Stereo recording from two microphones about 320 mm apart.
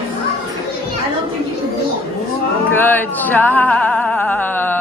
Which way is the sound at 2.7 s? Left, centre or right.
Centre.